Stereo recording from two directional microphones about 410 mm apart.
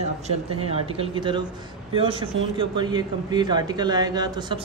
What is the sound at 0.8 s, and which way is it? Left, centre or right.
A man's voice, centre.